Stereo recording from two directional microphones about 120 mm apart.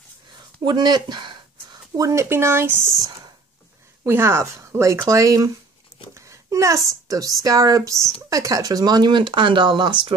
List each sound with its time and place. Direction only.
0.7 s a sound: 35° right (ahead or behind)
2.0 s a woman's voice: 25° right (ahead or behind)
4.0 s a woman's voice: 20° right (ahead or behind); by 10.1 s 40° right (ahead or behind)